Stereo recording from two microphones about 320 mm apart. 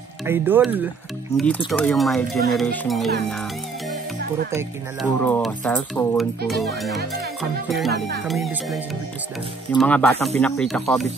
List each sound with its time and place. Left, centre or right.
0.2 s speech: centre
5.2 s speech: centre
9.8 s speech: centre